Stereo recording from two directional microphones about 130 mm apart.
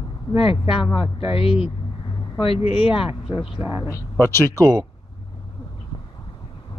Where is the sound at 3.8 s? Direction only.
20° left (ahead or behind).